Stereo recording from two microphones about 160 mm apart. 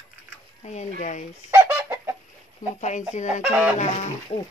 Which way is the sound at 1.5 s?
15° right (ahead or behind).